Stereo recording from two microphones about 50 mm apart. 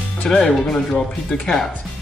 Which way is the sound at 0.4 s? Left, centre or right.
Centre.